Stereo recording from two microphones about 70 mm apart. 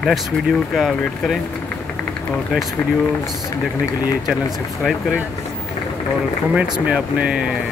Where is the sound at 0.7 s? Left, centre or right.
Centre.